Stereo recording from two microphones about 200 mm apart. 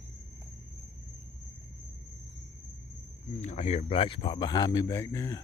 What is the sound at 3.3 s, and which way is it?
A man's voice, 35° left (ahead or behind).